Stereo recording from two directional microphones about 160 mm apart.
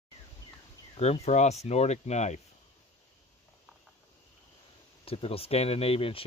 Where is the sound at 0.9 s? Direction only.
40° left (ahead or behind).